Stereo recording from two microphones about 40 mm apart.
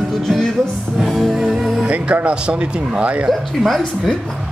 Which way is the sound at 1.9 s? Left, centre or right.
Right.